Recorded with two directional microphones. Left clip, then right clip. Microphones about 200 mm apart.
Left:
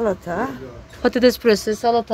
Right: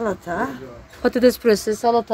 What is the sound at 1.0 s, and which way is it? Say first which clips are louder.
Speech: left 1 dB; 5° right (ahead or behind).